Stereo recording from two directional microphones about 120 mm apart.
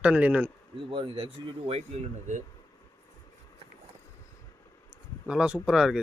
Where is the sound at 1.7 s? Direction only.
75° right (ahead or behind).